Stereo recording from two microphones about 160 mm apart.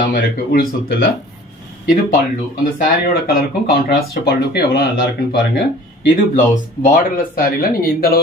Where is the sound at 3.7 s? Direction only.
75° left (ahead or behind).